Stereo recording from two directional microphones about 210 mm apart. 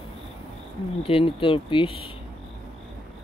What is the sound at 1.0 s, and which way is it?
Speech, 25° left (ahead or behind).